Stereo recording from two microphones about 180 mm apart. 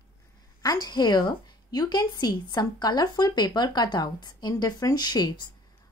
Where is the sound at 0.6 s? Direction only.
20° left (ahead or behind).